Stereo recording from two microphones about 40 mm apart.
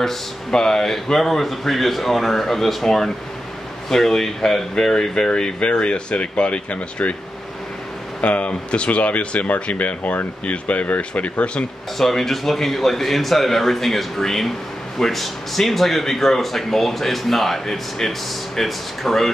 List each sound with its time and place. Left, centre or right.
0.5 s speech: centre; by 7.2 s left
8.2 s speech: left
12.0 s speech: centre